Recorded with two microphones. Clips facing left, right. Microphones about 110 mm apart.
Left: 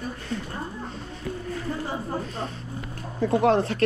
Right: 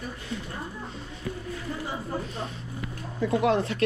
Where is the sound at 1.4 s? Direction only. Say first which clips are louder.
Left 5 dB; 45° left (ahead or behind).